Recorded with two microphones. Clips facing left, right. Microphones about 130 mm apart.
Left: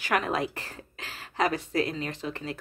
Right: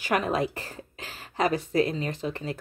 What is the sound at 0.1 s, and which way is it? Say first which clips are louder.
Speech: right 2 dB; 30° right (ahead or behind).